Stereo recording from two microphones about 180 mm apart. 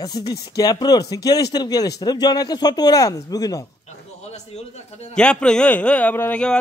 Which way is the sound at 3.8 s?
35° left (ahead or behind).